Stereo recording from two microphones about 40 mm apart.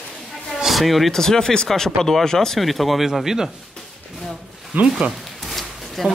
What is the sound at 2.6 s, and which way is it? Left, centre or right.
Speech, centre.